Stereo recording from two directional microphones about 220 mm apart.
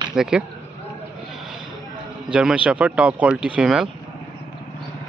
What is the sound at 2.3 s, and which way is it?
A man's voice, 5° right (ahead or behind).